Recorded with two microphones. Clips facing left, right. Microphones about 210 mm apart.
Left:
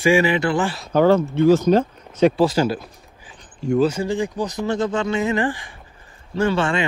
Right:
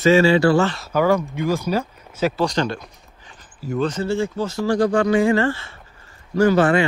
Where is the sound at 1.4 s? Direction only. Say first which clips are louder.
Left 8 dB; 15° right (ahead or behind).